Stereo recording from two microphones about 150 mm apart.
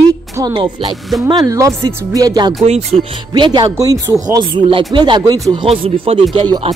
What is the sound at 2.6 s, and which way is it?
Speech, 45° right (ahead or behind).